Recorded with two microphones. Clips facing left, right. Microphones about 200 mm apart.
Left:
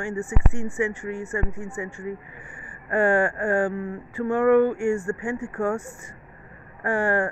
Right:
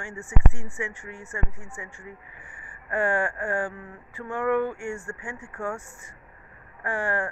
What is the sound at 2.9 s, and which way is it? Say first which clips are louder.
Speech: left 5 dB; 35° left (ahead or behind).